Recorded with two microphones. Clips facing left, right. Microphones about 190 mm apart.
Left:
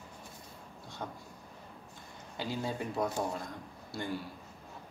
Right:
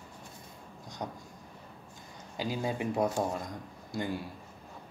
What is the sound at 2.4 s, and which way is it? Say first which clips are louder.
Speech: right 3 dB; 15° right (ahead or behind).